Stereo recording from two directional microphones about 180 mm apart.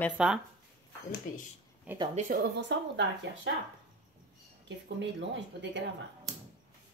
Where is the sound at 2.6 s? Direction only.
80° right.